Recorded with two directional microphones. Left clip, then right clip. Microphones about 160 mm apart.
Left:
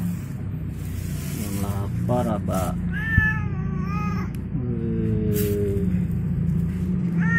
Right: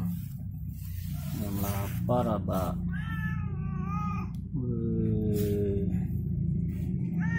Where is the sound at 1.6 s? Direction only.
15° right (ahead or behind).